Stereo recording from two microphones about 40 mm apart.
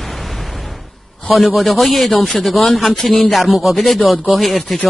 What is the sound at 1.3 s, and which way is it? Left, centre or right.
Speech, centre.